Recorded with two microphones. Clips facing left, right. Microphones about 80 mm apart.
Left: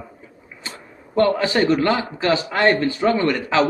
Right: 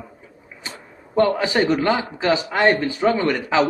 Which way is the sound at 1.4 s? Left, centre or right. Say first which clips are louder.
Left 1 dB; centre.